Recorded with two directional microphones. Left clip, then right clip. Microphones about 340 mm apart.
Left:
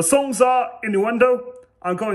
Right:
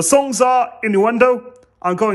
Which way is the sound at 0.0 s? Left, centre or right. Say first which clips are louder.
Right 3 dB; centre.